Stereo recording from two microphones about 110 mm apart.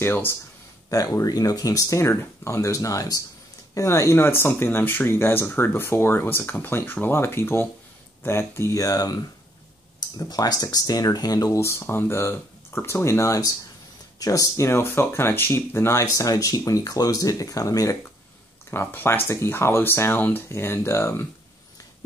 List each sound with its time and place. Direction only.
0.0 s speech: 15° left (ahead or behind)
0.8 s speech: 30° left (ahead or behind)
18.7 s speech: 20° left (ahead or behind)